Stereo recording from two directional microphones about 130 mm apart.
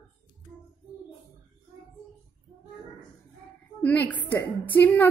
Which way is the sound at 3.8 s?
10° left (ahead or behind).